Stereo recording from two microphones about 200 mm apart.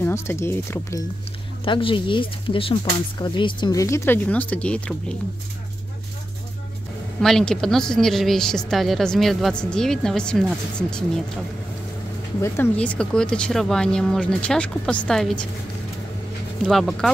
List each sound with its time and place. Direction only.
0.0 s speech: 10° left (ahead or behind)
1.6 s speech: 25° left (ahead or behind); by 4.9 s 5° left (ahead or behind)
7.2 s speech: 5° left (ahead or behind)
12.4 s speech: 10° left (ahead or behind)
16.6 s speech: centre (ahead or behind)